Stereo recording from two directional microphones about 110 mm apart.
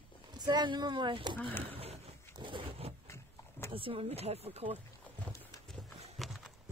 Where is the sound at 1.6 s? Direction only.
65° right (ahead or behind).